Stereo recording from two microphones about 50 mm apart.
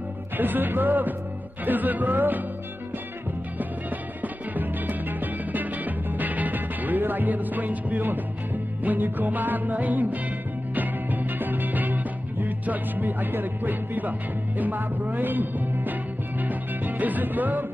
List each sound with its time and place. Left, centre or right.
0.4 s music: right
4.2 s music: right